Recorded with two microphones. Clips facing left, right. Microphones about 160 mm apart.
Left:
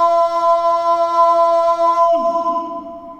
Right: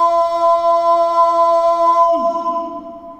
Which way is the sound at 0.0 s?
35° right (ahead or behind).